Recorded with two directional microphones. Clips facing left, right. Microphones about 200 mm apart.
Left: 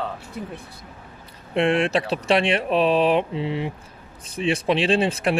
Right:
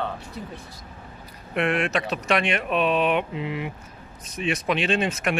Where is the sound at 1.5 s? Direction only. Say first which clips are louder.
Left 4 dB; 30° left (ahead or behind).